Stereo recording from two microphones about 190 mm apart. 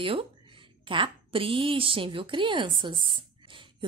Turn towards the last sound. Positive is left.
turn(degrees=-25)  # may be behind; listen again after turning